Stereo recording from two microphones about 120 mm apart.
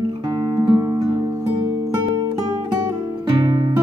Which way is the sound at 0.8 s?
30° right (ahead or behind).